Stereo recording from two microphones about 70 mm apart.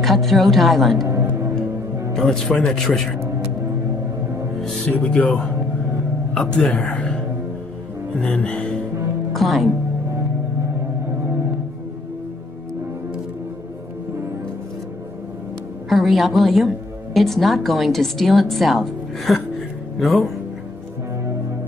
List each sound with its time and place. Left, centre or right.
0.0 s a woman's voice: centre
1.0 s music: right
2.1 s a woman's voice: centre
3.2 s music: right
4.9 s a man's voice: centre
8.2 s a man's voice: centre
9.3 s a woman's voice: centre
15.9 s a woman's voice: centre